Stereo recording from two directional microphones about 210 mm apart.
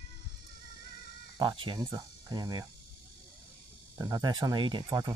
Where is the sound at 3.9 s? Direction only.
15° right (ahead or behind).